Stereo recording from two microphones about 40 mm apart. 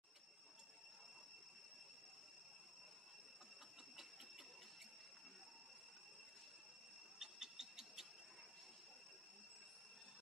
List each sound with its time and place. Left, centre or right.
7.2 s owl: centre